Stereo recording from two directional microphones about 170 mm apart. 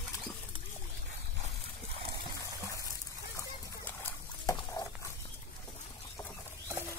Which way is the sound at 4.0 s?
20° left (ahead or behind).